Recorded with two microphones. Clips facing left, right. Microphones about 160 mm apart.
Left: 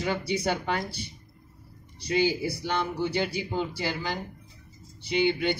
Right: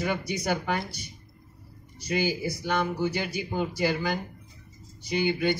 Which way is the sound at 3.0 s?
30° left (ahead or behind).